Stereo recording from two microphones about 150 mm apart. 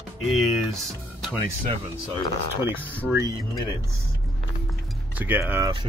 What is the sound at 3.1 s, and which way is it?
Speech, 20° right (ahead or behind).